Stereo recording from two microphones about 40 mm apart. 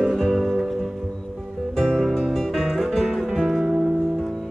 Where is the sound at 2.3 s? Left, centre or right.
Centre.